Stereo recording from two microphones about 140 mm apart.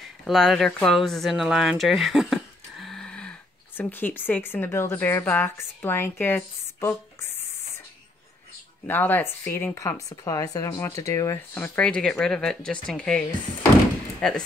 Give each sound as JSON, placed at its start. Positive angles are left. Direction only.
{"t": 0.3, "sound": "speech", "side_deg": 0}
{"t": 8.8, "sound": "speech", "side_deg": 15}
{"t": 11.5, "sound": "speech", "side_deg": 10}